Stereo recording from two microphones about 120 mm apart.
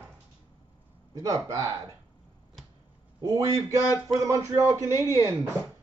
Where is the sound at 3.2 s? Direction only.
30° right (ahead or behind).